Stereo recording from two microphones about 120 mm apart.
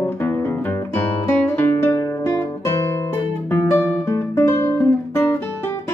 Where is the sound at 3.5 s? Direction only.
20° left (ahead or behind).